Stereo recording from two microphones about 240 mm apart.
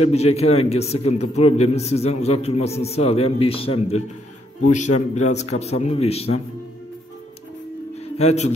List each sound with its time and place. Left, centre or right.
0.0 s a man's voice: left
8.2 s a man's voice: left